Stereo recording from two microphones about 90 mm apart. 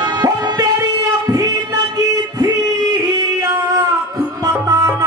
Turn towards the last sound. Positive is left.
turn(degrees=-40)  # may be behind; listen again after turning